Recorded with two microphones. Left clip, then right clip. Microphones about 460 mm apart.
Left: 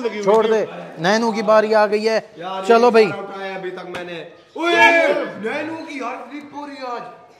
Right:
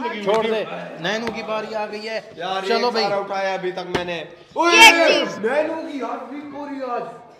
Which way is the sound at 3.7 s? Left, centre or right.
Left.